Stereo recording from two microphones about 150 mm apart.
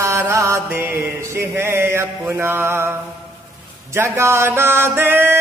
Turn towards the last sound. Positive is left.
turn(degrees=-15)  # may be behind; listen again after turning